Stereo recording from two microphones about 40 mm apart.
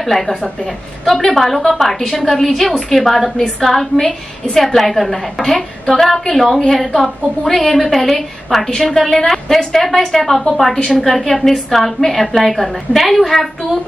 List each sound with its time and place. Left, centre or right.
0.1 s a woman's voice: centre
7.4 s a woman's voice: centre